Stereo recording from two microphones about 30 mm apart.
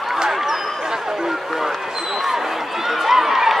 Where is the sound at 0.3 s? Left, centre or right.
Centre.